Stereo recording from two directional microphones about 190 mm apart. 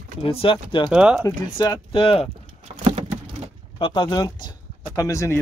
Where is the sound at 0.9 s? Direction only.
5° right (ahead or behind).